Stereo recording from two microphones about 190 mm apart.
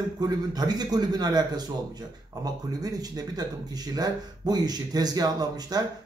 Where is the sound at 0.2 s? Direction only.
20° right (ahead or behind).